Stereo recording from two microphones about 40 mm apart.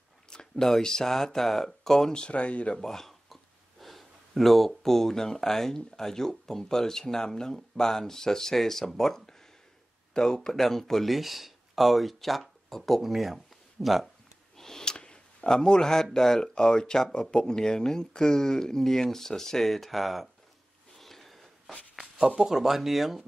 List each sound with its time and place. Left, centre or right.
0.3 s speech: centre
2.1 s speech: left
10.5 s speech: centre
11.1 s speech: centre
14.6 s a sound: centre
15.5 s speech: centre
21.0 s a sound: centre
22.4 s speech: centre